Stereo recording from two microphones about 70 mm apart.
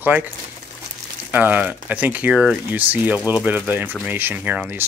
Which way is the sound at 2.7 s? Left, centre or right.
Right.